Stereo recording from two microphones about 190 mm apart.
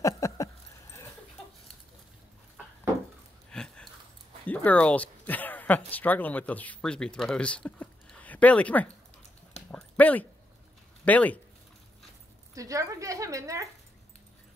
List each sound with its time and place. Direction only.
0.0 s a sound: 15° left (ahead or behind)
3.4 s a sound: 5° left (ahead or behind)
4.5 s speech: 5° left (ahead or behind)
9.7 s dog: 5° left (ahead or behind)
11.1 s speech: 10° left (ahead or behind)
12.5 s a woman's voice: 15° right (ahead or behind)